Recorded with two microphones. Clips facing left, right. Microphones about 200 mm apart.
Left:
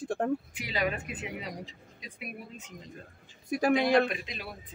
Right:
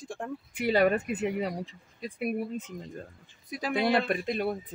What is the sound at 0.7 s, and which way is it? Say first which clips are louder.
Speech: right 8 dB; 55° right (ahead or behind).